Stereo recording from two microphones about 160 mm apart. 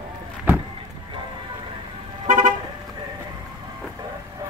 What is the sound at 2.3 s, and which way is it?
Car, 50° right (ahead or behind).